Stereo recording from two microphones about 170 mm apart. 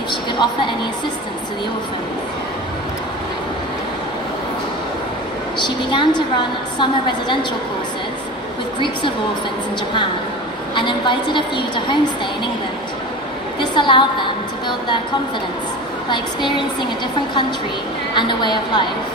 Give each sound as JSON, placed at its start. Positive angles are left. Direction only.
{"t": 0.1, "sound": "a sound", "side_deg": 25}
{"t": 5.9, "sound": "a woman's voice", "side_deg": 25}
{"t": 10.7, "sound": "a woman's voice", "side_deg": 30}
{"t": 13.6, "sound": "a woman's voice", "side_deg": 30}
{"t": 16.1, "sound": "a woman's voice", "side_deg": 25}
{"t": 18.1, "sound": "a woman's voice", "side_deg": 25}